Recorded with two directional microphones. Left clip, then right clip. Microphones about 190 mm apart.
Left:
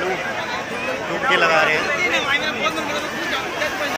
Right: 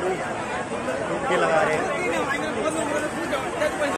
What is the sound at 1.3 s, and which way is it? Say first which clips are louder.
Speech: left 5 dB; centre (ahead or behind).